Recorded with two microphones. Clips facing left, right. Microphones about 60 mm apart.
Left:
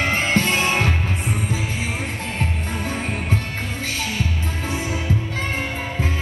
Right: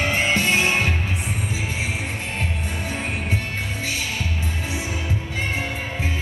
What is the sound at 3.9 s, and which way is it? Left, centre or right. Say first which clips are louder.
Music: left 3 dB; left.